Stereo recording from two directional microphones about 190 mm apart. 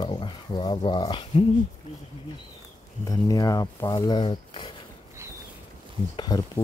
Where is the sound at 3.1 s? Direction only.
20° left (ahead or behind).